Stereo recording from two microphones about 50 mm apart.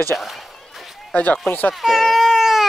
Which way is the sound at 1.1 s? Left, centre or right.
Left.